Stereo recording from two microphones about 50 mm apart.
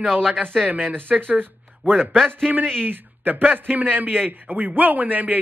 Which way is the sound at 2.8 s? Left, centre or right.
Right.